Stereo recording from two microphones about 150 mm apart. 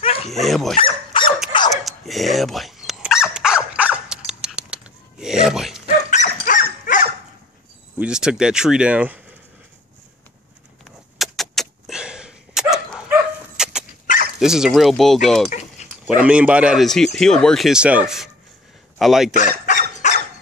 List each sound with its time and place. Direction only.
0.0 s dog: 40° left (ahead or behind)
0.3 s speech: centre (ahead or behind)
0.7 s dog: 35° left (ahead or behind)
1.7 s dog: centre (ahead or behind)
5.2 s a sound: 5° right (ahead or behind)
6.0 s dog: 55° left (ahead or behind)
8.0 s speech: 5° right (ahead or behind)
11.1 s vehicle: centre (ahead or behind)
13.1 s dog: 5° right (ahead or behind)
14.4 s speech: 5° right (ahead or behind)
15.8 s dog: 45° left (ahead or behind)
16.2 s speech: 5° right (ahead or behind)
19.6 s dog: 55° left (ahead or behind)